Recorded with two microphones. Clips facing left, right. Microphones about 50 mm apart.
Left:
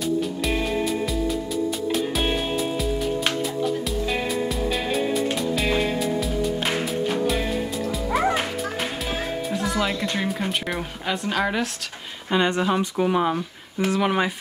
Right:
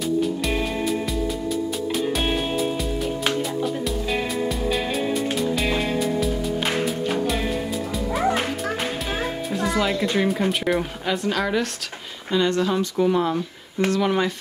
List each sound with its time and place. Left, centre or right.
5.3 s music: centre
9.5 s music: centre
9.8 s speech: centre
12.3 s speech: left